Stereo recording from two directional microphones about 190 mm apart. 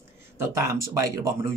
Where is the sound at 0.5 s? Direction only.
15° right (ahead or behind).